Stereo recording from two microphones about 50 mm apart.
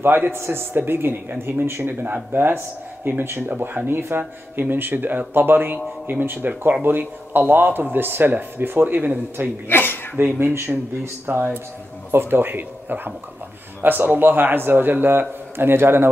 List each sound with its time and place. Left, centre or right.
0.0 s a man's voice: right
9.7 s speech: left
10.1 s a man's voice: right